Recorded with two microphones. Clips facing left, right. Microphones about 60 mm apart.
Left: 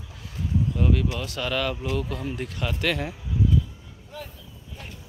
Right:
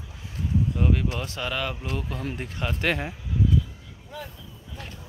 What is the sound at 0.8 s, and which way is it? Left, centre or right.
Speech, right.